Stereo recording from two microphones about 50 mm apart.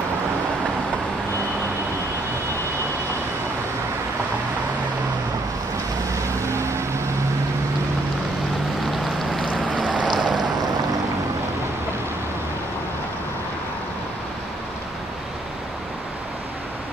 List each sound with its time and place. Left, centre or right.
9.3 s boat: centre
10.0 s boat: centre